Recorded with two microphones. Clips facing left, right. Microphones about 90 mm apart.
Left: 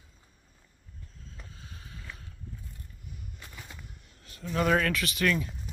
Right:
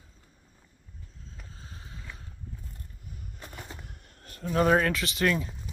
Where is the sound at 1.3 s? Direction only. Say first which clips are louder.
Right 1 dB; 30° right (ahead or behind).